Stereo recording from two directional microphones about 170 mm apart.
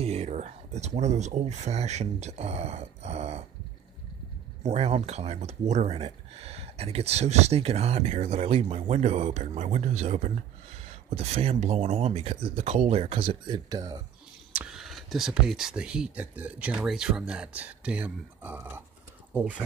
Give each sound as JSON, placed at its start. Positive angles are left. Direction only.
{"t": 0.0, "sound": "speech", "side_deg": -40}
{"t": 4.6, "sound": "speech", "side_deg": -40}
{"t": 14.5, "sound": "speech", "side_deg": -5}